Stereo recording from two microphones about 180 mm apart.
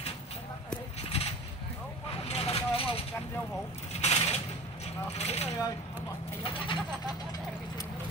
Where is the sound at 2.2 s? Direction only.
35° left (ahead or behind).